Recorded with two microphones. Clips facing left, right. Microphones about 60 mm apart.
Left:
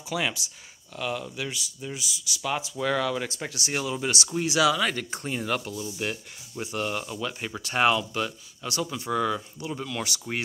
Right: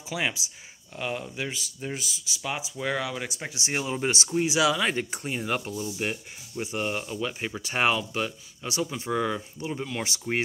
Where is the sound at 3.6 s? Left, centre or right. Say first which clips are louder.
Right 1 dB; right.